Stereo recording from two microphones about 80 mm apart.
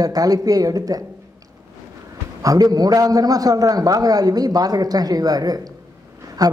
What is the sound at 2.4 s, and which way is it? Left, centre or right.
Speech, right.